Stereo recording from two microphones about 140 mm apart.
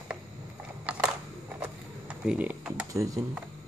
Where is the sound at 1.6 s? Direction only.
10° right (ahead or behind).